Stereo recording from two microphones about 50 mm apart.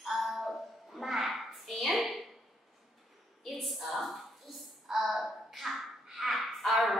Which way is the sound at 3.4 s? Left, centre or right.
Centre.